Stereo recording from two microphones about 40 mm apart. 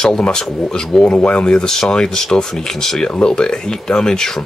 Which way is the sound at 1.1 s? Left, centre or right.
Left.